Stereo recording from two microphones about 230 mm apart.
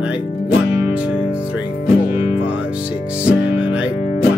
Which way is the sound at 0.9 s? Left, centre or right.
Centre.